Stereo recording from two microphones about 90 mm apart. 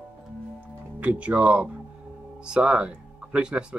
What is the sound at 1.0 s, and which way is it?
Speech, 15° right (ahead or behind).